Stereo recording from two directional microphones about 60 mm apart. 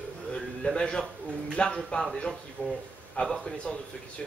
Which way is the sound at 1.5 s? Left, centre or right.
Centre.